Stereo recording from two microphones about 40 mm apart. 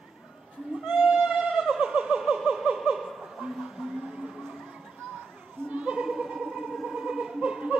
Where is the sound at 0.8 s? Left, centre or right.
Right.